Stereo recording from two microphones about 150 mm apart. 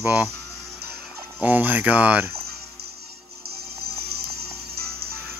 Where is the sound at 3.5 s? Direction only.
90° right.